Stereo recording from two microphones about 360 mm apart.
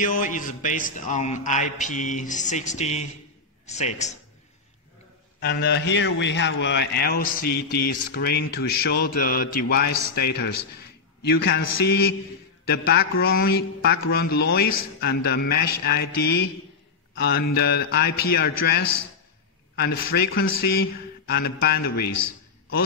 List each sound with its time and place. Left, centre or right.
0.2 s a man's voice: left
5.4 s a man's voice: left
19.7 s a man's voice: left